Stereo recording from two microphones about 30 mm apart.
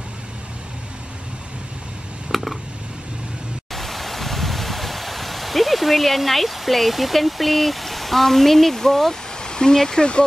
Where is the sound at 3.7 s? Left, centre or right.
Centre.